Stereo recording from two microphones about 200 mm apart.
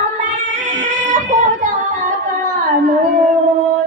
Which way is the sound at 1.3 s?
40° right (ahead or behind).